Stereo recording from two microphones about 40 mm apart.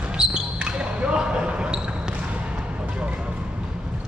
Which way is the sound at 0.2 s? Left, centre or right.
Right.